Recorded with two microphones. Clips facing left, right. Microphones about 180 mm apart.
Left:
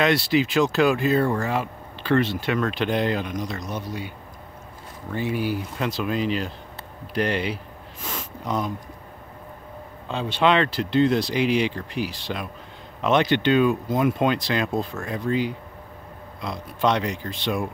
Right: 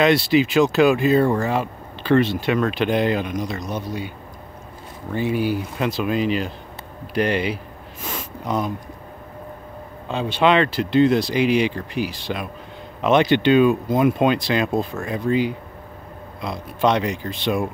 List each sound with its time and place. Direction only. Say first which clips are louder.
0.0 s speech: right 4 dB; 20° right (ahead or behind)
5.1 s speech: right 4 dB; 20° right (ahead or behind)
10.0 s speech: right 3 dB; 15° right (ahead or behind)